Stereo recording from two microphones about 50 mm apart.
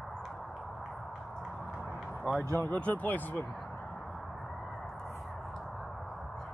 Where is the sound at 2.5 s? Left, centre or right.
Left.